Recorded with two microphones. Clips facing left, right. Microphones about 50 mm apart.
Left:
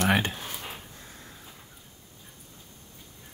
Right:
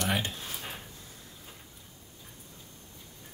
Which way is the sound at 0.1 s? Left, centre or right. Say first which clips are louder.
Left 6 dB; left.